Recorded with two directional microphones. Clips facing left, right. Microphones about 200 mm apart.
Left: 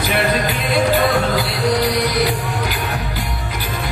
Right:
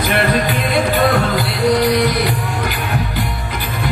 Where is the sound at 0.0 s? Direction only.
55° right (ahead or behind).